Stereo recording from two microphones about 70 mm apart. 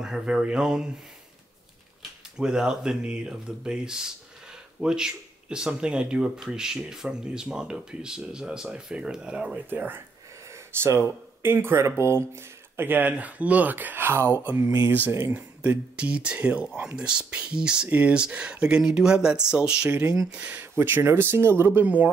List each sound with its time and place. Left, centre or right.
0.0 s speech: centre
2.3 s speech: centre
9.8 s speech: right
15.6 s speech: right
20.7 s speech: right
21.8 s speech: right